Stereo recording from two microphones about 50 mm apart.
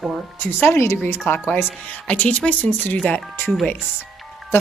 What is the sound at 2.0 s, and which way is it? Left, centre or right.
Speech, left.